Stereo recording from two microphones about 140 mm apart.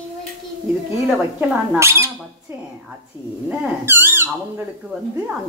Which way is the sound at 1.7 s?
20° right (ahead or behind).